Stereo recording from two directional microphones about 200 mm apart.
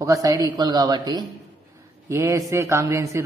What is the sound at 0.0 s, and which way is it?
A woman's voice, 15° right (ahead or behind).